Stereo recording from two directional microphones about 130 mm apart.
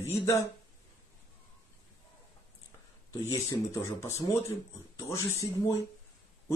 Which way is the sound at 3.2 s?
20° left (ahead or behind).